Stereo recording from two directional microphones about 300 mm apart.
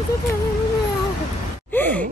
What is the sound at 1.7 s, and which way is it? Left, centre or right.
Sigh, centre.